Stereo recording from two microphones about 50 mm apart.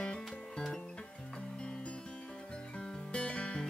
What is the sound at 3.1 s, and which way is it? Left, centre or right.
Music, left.